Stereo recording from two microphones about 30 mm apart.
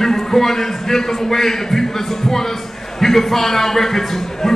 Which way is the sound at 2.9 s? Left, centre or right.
Centre.